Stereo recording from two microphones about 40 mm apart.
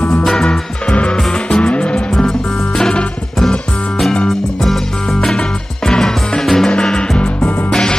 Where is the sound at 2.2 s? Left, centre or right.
Centre.